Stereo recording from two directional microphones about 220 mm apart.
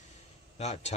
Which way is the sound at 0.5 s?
30° left (ahead or behind).